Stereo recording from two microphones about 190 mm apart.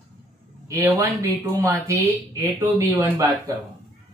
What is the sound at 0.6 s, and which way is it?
A man's voice, 15° right (ahead or behind).